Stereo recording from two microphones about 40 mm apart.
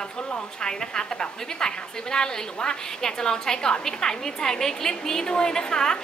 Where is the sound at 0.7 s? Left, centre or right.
Centre.